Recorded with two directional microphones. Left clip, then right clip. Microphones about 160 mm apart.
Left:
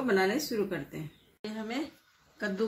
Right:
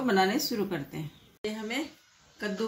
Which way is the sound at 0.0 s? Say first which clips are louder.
Right 2 dB; 80° right.